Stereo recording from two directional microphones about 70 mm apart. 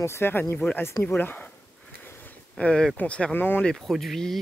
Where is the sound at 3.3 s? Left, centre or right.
Left.